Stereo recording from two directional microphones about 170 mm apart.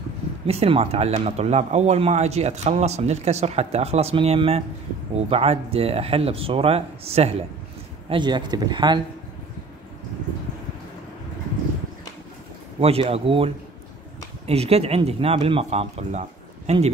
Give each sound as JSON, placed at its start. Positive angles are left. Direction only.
{"t": 0.5, "sound": "speech", "side_deg": -35}
{"t": 8.1, "sound": "speech", "side_deg": -25}
{"t": 12.8, "sound": "speech", "side_deg": -35}